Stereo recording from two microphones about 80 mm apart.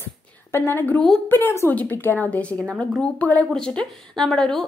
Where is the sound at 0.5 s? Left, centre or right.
Left.